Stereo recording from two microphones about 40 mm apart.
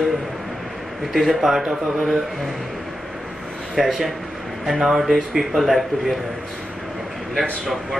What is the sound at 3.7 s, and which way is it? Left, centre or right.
Speech, centre.